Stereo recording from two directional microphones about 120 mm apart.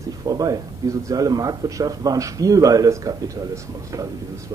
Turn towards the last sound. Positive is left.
turn(degrees=-30)  # may be behind; listen again after turning